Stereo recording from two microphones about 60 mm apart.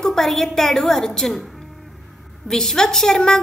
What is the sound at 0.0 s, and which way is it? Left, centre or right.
A woman's voice, centre.